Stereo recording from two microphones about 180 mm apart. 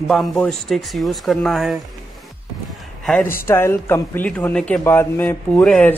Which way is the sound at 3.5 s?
15° left (ahead or behind).